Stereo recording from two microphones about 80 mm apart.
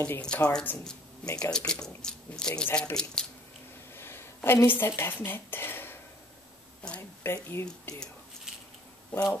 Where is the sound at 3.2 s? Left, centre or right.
Centre.